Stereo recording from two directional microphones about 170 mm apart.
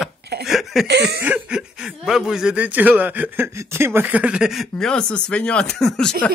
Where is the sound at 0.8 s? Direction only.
90° right.